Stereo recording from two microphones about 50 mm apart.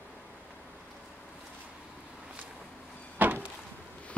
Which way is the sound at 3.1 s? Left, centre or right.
Right.